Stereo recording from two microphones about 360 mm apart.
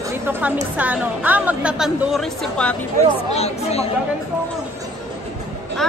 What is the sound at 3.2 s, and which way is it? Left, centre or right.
Speech, centre.